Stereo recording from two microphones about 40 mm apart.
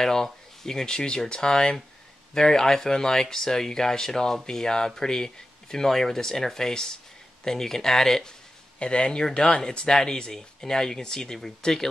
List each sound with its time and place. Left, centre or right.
0.0 s speech: centre
8.7 s speech: left